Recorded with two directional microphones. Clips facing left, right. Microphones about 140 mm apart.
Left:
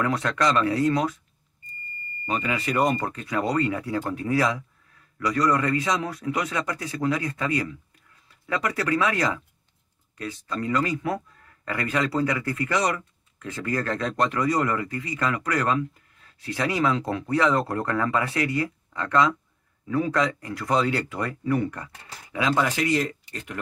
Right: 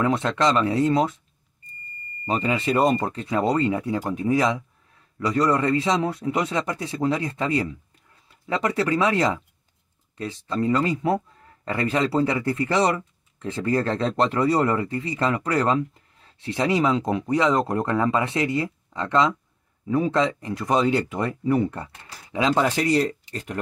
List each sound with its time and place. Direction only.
0.0 s speech: 25° right (ahead or behind)
2.2 s speech: 30° right (ahead or behind)